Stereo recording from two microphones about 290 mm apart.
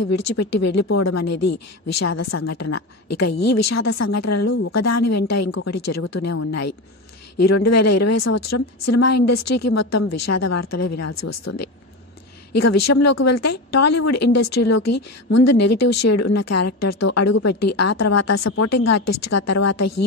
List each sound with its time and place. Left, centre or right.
0.0 s a woman's voice: left